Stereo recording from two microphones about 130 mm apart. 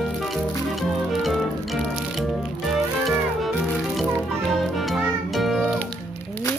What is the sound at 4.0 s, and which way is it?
Music, centre (ahead or behind).